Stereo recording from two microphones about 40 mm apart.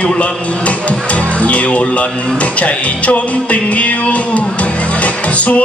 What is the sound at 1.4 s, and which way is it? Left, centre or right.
Speech, left.